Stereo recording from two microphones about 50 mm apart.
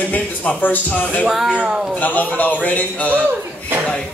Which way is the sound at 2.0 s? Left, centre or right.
Left.